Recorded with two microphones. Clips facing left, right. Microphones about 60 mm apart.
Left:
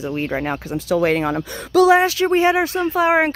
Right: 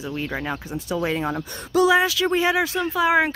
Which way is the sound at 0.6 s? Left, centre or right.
Left.